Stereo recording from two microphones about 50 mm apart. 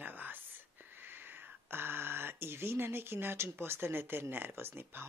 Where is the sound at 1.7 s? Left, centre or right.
Right.